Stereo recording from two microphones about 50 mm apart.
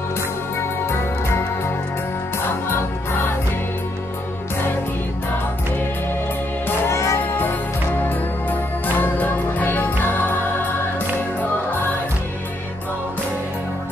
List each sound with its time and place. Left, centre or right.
6.9 s music: left
8.5 s music: left